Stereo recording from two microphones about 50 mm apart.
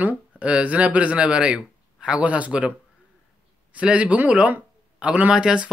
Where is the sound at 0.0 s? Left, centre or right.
Right.